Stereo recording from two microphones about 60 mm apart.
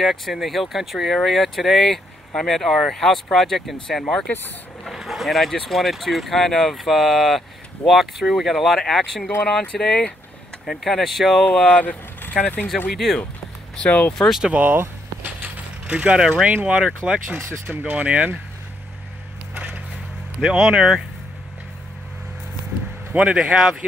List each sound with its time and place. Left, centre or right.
0.0 s speech: centre
9.4 s speech: centre
10.6 s speech: centre
11.5 s speech: left
12.2 s vehicle: left
12.9 s speech: centre
13.7 s speech: left
14.5 s speech: right
15.9 s speech: centre
19.5 s a sound: right
20.4 s speech: centre
23.1 s speech: centre